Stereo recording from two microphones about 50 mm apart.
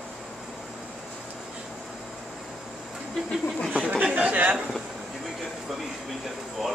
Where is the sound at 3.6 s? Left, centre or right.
Centre.